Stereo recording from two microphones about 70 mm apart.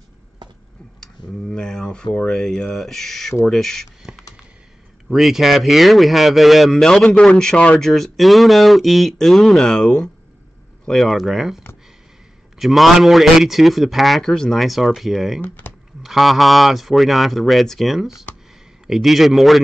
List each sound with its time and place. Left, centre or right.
0.4 s a sound: right
1.0 s a man's voice: centre
5.1 s a man's voice: centre
7.8 s a man's voice: centre
15.4 s speech: left
16.0 s a man's voice: centre